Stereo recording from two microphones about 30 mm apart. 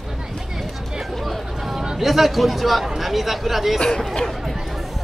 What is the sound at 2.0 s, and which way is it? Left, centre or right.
Speech, centre.